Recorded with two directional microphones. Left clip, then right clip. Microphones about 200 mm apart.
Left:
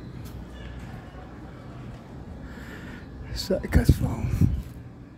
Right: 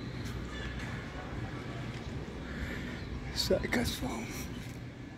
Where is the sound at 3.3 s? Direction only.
40° left (ahead or behind).